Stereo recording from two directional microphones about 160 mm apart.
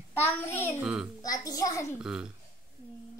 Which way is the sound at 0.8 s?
5° right (ahead or behind).